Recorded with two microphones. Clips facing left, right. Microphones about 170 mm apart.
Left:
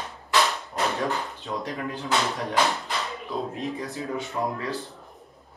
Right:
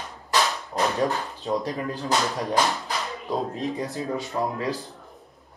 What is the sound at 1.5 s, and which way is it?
Speech, 35° right (ahead or behind).